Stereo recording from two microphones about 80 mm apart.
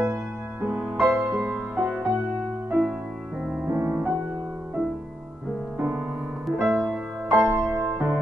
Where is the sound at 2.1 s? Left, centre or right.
Right.